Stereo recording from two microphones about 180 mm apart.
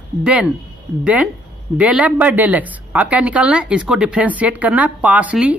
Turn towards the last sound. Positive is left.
turn(degrees=-5)  # may be behind; listen again after turning